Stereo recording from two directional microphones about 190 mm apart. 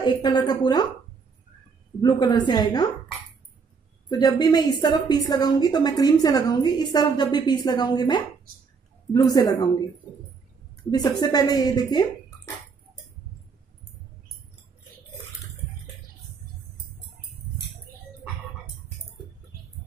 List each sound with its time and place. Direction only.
0.0 s a woman's voice: 25° left (ahead or behind)
2.0 s a woman's voice: 25° left (ahead or behind)
4.1 s a woman's voice: 20° left (ahead or behind)
10.9 s a woman's voice: 20° left (ahead or behind)